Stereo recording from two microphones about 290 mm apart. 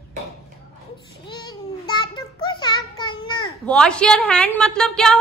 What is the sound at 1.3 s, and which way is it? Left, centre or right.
Child singing, centre.